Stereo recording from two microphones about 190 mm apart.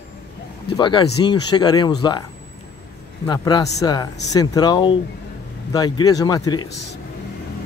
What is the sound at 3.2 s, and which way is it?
Speech, 20° left (ahead or behind).